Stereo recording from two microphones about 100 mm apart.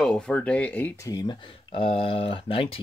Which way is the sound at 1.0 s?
45° left (ahead or behind).